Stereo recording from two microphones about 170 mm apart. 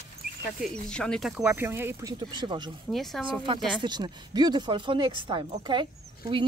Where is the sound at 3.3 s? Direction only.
30° right (ahead or behind).